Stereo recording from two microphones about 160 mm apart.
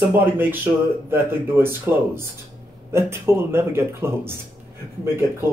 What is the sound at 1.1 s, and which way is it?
Speech, 15° right (ahead or behind).